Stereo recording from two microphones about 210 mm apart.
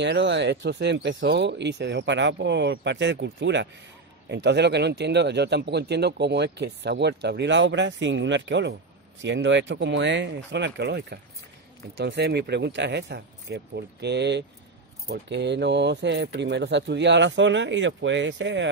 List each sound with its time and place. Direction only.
0.0 s speech: 55° right (ahead or behind)